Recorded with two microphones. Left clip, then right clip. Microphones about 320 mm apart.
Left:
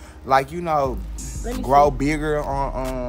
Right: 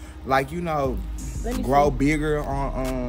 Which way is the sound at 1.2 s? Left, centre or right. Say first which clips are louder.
Even; centre.